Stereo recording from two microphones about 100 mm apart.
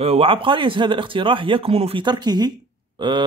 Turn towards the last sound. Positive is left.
turn(degrees=-50)  # may be behind; listen again after turning